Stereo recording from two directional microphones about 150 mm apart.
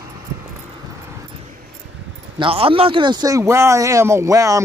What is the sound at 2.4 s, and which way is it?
Speech, 35° right (ahead or behind).